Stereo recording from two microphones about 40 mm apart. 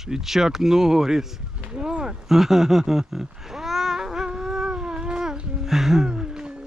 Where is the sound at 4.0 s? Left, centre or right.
Centre.